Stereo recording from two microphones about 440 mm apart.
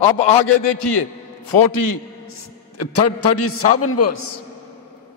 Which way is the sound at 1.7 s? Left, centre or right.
Left.